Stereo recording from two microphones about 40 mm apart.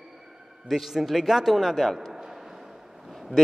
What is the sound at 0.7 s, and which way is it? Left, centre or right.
A man's voice, centre.